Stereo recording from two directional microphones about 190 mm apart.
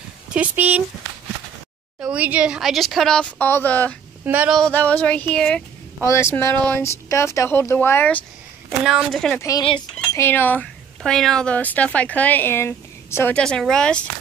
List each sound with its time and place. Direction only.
0.3 s speech: 10° right (ahead or behind)
2.0 s speech: 5° right (ahead or behind); by 3.9 s 10° left (ahead or behind)
4.2 s speech: 10° right (ahead or behind)
4.6 s a woman's voice: 5° left (ahead or behind)
8.8 s speech: centre (ahead or behind)
9.4 s a woman's voice: 20° left (ahead or behind)